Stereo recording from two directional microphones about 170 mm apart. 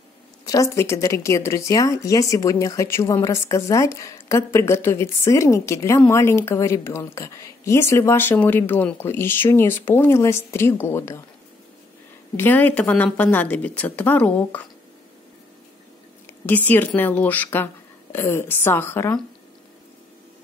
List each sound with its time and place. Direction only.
0.5 s speech: 20° left (ahead or behind)
12.4 s speech: 10° left (ahead or behind)
16.4 s speech: 10° left (ahead or behind)